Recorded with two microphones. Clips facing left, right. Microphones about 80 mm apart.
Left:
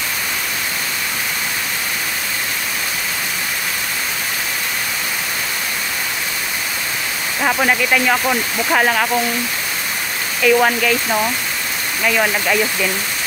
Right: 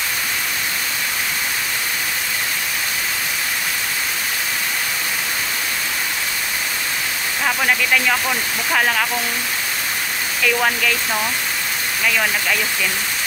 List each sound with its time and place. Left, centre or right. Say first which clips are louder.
7.4 s speech: left 3 dB; centre
10.4 s speech: left 5 dB; centre